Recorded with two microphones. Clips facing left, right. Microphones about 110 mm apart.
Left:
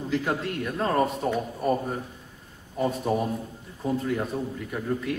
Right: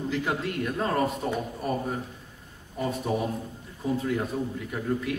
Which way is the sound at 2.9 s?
Centre (ahead or behind).